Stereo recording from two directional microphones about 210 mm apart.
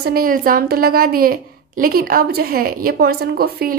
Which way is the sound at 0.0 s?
45° right (ahead or behind).